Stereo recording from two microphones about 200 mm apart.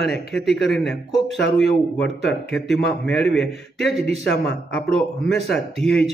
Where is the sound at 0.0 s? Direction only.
55° left (ahead or behind).